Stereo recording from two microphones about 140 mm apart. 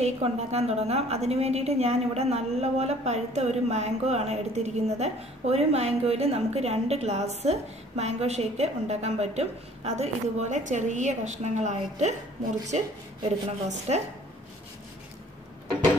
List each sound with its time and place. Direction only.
0.0 s a woman's voice: 50° right (ahead or behind)
13.7 s a woman's voice: 50° right (ahead or behind)